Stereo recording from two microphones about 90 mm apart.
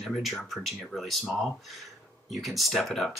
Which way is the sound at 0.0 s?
Centre (ahead or behind).